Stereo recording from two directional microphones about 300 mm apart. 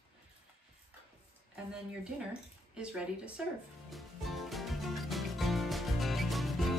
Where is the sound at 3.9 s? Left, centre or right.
Centre.